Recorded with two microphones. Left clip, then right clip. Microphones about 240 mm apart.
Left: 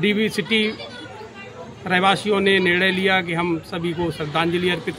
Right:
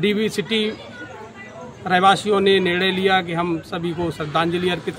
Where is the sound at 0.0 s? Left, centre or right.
Centre.